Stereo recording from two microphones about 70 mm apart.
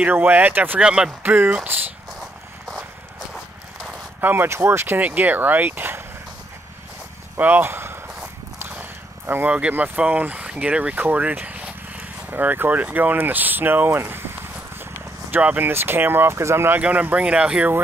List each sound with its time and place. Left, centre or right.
0.0 s speech: right
0.7 s speech: centre
1.2 s speech: right
2.1 s a sound: centre
4.2 s speech: right
7.3 s speech: right
8.5 s a sound: right
9.5 s speech: right
15.3 s speech: right
16.8 s speech: right